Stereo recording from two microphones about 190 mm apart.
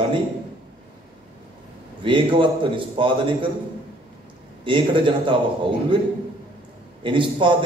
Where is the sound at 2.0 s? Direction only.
25° right (ahead or behind).